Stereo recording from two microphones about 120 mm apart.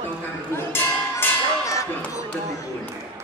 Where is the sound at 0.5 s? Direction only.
20° left (ahead or behind).